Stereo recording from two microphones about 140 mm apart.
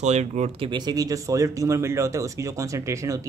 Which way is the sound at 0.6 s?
30° right (ahead or behind).